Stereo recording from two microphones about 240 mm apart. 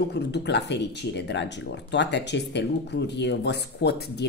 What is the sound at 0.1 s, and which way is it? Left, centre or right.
Speech, left.